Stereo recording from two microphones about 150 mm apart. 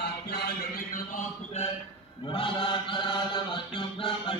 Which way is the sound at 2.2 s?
35° left (ahead or behind).